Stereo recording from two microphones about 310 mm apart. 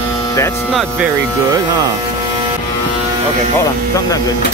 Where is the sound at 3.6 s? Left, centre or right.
Centre.